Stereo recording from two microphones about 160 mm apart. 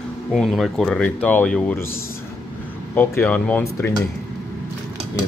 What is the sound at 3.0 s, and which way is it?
Speech, 10° left (ahead or behind).